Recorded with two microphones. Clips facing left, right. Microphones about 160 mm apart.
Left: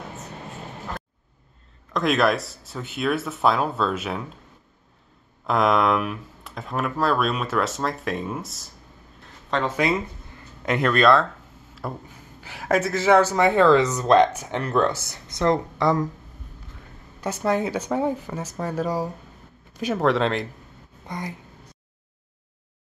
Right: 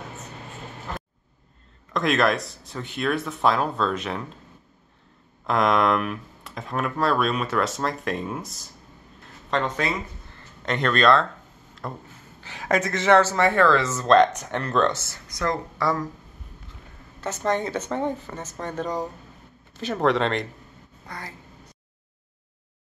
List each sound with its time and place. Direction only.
2.0 s speech: centre (ahead or behind)
5.5 s speech: centre (ahead or behind)
15.2 s speech: 25° left (ahead or behind)
17.2 s speech: 10° left (ahead or behind)
21.1 s speech: 20° left (ahead or behind)